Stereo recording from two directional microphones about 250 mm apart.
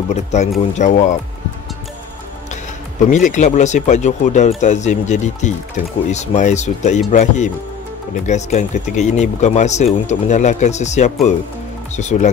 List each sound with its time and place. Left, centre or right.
0.1 s speech: left
3.0 s speech: left